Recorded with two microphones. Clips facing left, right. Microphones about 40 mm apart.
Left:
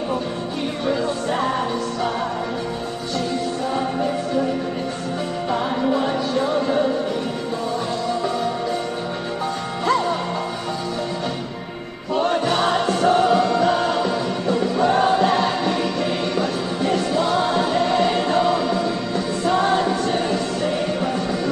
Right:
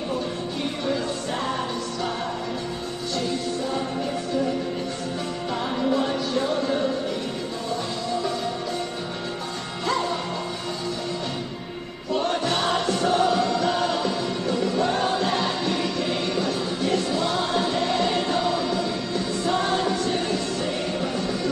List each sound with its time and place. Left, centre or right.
0.8 s music: left
5.5 s music: centre
12.2 s music: left
12.4 s music: left
17.1 s choir: left
20.1 s music: left